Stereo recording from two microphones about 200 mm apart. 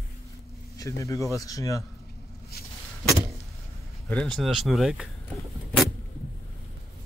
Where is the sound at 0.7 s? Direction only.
15° left (ahead or behind).